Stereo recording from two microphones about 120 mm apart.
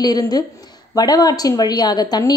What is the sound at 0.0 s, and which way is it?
A woman's voice, 35° left (ahead or behind).